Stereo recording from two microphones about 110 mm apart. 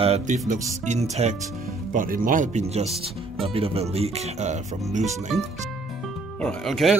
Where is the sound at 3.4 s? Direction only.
60° right (ahead or behind); by 5.1 s 90° right.